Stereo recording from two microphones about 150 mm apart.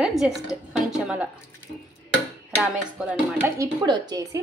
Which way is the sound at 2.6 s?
10° right (ahead or behind).